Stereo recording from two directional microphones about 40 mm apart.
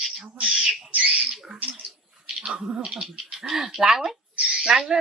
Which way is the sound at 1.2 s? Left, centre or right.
Right.